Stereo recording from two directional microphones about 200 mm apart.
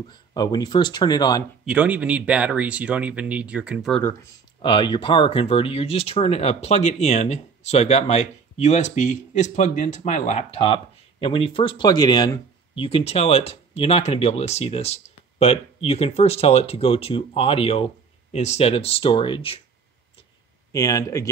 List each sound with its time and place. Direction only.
0.1 s speech: 20° left (ahead or behind)
1.7 s speech: 5° right (ahead or behind)
3.9 s speech: 10° left (ahead or behind)
4.6 s speech: 25° left (ahead or behind)
20.7 s speech: 15° left (ahead or behind)